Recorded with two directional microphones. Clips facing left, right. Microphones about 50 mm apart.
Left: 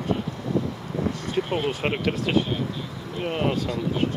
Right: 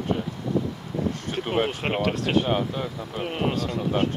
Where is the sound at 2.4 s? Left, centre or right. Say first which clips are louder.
Right 4 dB; right.